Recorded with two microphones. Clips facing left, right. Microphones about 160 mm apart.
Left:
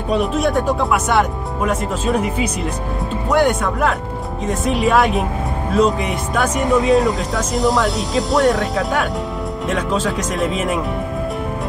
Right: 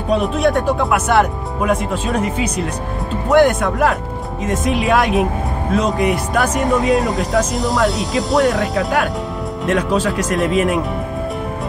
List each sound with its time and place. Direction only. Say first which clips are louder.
0.1 s speech: right 2 dB; centre (ahead or behind)